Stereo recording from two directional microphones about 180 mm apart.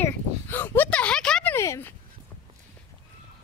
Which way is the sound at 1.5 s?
15° left (ahead or behind).